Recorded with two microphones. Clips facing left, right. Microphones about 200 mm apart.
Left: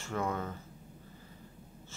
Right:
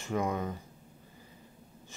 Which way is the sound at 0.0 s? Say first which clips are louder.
Right 3 dB; 15° right (ahead or behind).